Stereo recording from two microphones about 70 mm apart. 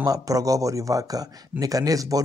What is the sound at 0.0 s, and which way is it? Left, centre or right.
A man's voice, right.